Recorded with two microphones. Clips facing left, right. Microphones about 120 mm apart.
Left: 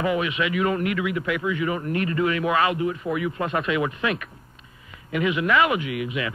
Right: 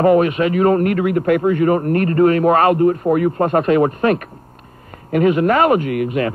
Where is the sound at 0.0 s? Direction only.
45° right (ahead or behind).